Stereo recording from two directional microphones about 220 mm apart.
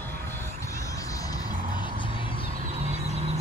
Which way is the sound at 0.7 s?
15° left (ahead or behind).